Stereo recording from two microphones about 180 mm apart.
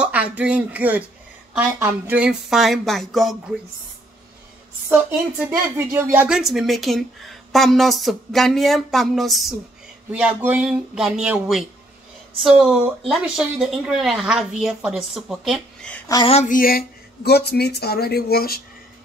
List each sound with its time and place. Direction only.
0.0 s speech: 5° right (ahead or behind)
5.8 s speech: 15° right (ahead or behind); by 16.0 s 5° left (ahead or behind)
16.3 s a sound: 35° left (ahead or behind)
16.5 s speech: 55° left (ahead or behind)